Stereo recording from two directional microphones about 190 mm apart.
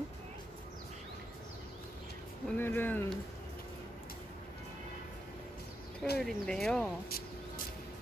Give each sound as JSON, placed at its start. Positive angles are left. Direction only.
{"t": 2.5, "sound": "speech", "side_deg": 10}
{"t": 6.1, "sound": "speech", "side_deg": 0}
{"t": 7.1, "sound": "vehicle", "side_deg": 55}